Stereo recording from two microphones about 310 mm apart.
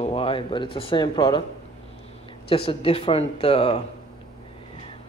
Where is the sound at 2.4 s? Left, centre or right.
Centre.